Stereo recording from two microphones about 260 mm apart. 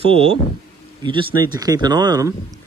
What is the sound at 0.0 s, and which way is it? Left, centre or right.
Speech, right.